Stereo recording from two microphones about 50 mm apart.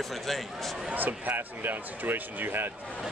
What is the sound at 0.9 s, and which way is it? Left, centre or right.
Speech, right.